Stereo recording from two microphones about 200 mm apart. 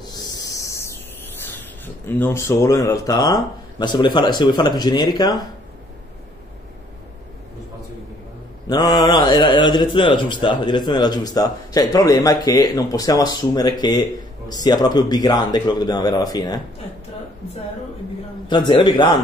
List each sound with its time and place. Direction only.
0.0 s a sound: 20° left (ahead or behind)
1.3 s spray: 10° left (ahead or behind)
2.0 s speech: 10° left (ahead or behind)
8.6 s speech: 20° left (ahead or behind)
18.5 s speech: 20° left (ahead or behind)